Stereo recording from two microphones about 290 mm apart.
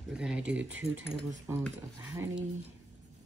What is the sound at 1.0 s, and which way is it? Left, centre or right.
Speech, right.